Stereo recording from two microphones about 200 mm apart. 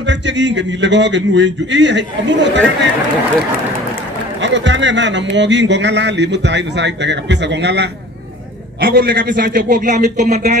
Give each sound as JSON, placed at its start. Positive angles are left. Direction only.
{"t": 0.0, "sound": "speech", "side_deg": -65}
{"t": 4.4, "sound": "a man's voice", "side_deg": -65}